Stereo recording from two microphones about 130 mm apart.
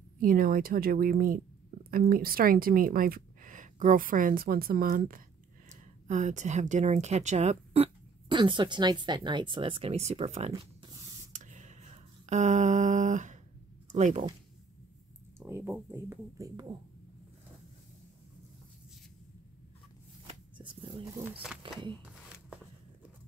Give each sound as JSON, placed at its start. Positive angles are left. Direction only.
{"t": 0.2, "sound": "speech", "side_deg": -90}
{"t": 5.7, "sound": "speech", "side_deg": -65}
{"t": 11.3, "sound": "a sound", "side_deg": -75}
{"t": 13.9, "sound": "speech", "side_deg": -65}
{"t": 15.3, "sound": "speech", "side_deg": -20}
{"t": 20.5, "sound": "a sound", "side_deg": -40}
{"t": 21.2, "sound": "speech", "side_deg": -10}